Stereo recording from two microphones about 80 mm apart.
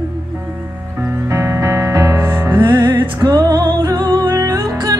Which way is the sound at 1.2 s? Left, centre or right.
Right.